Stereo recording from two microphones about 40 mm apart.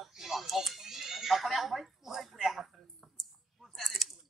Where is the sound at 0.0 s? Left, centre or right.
Centre.